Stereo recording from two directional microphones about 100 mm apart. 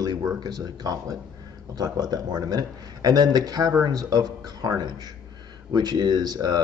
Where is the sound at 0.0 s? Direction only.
40° right (ahead or behind).